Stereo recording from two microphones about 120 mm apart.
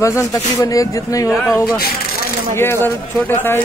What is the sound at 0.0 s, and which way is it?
Speech, 25° left (ahead or behind).